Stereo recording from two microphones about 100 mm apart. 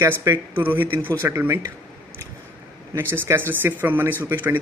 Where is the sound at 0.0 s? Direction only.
25° right (ahead or behind).